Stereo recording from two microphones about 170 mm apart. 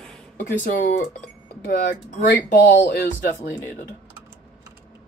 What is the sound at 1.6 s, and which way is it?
Speech, 80° left.